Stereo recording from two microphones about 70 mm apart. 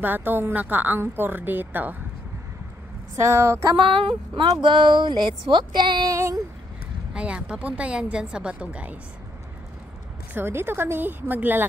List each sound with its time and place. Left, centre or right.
0.0 s a woman's voice: right
3.2 s a sound: right
4.1 s speech: right
6.1 s a sound: right
7.2 s speech: centre
10.3 s a woman's voice: right